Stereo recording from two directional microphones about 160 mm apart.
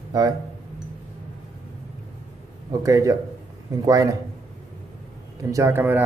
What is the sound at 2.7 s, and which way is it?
A man's voice, 20° right (ahead or behind).